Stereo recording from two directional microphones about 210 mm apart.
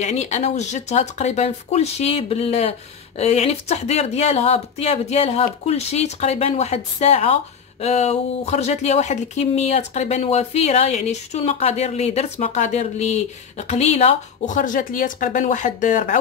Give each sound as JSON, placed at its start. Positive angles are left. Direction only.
{"t": 0.0, "sound": "speech", "side_deg": 35}